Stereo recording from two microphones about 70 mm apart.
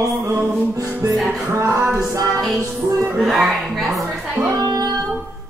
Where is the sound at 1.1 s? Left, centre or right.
Centre.